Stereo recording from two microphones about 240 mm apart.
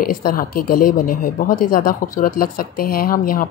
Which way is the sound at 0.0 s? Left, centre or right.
Left.